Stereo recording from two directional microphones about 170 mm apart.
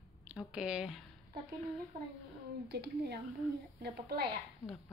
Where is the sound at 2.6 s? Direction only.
75° right (ahead or behind).